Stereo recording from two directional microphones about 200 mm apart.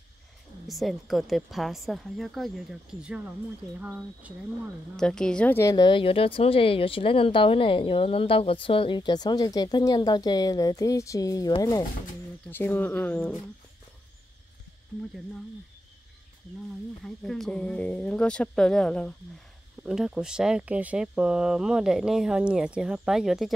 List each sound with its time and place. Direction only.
0.7 s speech: centre (ahead or behind)
4.9 s speech: 5° left (ahead or behind)
17.0 s speech: centre (ahead or behind)